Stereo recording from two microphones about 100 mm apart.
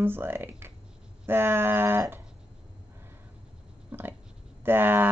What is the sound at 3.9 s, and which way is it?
Dog, 20° right (ahead or behind).